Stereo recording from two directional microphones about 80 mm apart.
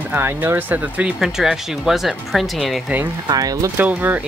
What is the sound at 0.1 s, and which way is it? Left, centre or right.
Speech, right.